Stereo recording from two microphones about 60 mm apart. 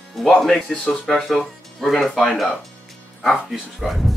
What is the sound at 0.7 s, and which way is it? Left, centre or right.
Speech, centre.